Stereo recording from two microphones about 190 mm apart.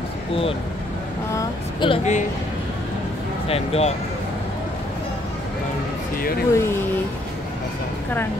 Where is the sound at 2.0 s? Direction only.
40° left (ahead or behind).